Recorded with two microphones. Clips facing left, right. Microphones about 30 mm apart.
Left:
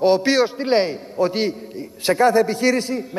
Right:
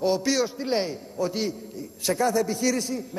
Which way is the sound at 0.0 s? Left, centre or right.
Left.